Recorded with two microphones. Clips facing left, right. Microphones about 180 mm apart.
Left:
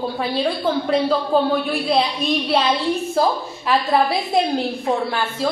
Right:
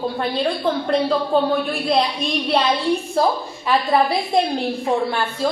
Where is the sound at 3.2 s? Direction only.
Centre (ahead or behind).